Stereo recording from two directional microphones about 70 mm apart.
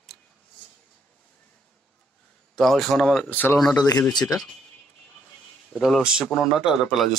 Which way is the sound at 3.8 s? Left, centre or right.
Left.